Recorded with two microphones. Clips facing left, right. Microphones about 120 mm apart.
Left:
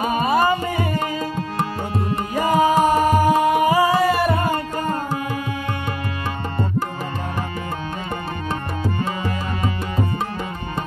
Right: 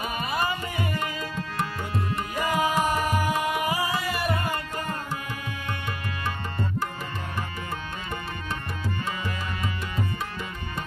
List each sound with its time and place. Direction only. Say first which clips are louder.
0.0 s tabla: left 10 dB; 40° left (ahead or behind)
8.9 s music: left 7 dB; 35° left (ahead or behind)